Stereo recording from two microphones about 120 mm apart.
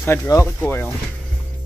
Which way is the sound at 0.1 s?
25° left (ahead or behind).